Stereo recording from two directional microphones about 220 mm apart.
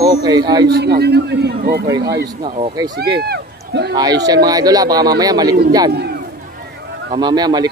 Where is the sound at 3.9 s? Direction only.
15° right (ahead or behind).